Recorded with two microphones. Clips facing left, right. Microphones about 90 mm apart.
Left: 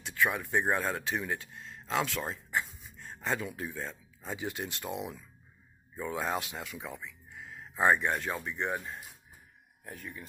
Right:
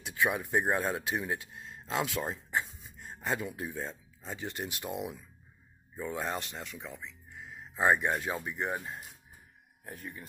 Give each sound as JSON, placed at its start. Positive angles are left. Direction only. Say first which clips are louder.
{"t": 0.0, "sound": "speech", "louder": "even", "side_deg": -20}
{"t": 0.5, "sound": "speech", "louder": "even", "side_deg": -5}
{"t": 2.0, "sound": "a sound", "louder": "right 1 dB", "side_deg": -20}
{"t": 3.3, "sound": "speech", "louder": "even", "side_deg": -5}
{"t": 4.2, "sound": "speech", "louder": "left 2 dB", "side_deg": 5}
{"t": 4.6, "sound": "speech", "louder": "even", "side_deg": -5}